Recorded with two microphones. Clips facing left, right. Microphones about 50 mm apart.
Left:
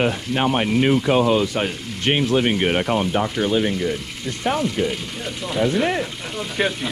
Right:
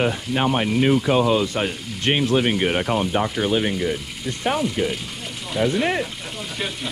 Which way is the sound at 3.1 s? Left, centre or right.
Centre.